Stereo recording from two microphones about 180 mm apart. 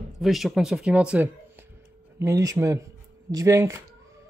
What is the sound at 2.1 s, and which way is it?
Speech, 15° right (ahead or behind).